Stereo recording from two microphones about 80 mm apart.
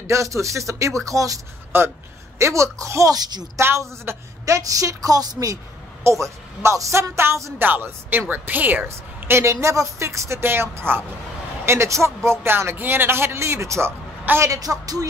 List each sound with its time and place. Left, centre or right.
0.0 s a woman's voice: right
1.7 s a woman's voice: right
3.5 s a woman's voice: right
6.0 s a woman's voice: right
7.6 s a woman's voice: right
14.5 s a woman's voice: right